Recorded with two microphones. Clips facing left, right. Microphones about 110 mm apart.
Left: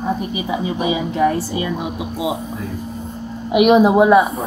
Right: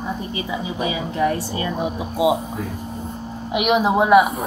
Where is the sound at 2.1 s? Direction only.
25° right (ahead or behind).